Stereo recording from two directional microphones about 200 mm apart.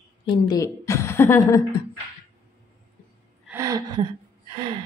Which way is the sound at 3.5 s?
15° right (ahead or behind).